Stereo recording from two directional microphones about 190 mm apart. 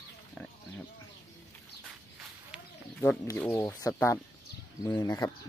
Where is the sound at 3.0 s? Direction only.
10° left (ahead or behind).